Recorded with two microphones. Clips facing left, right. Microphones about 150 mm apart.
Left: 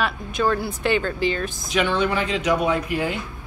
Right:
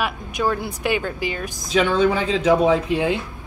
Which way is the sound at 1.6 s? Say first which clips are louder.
Right 5 dB; 30° right (ahead or behind).